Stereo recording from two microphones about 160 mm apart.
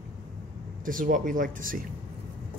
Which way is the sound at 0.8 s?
60° right (ahead or behind).